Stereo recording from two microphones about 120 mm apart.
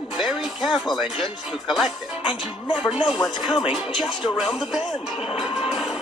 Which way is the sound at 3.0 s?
Centre (ahead or behind).